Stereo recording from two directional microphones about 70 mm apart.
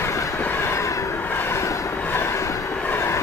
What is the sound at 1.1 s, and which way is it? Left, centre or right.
Train, left.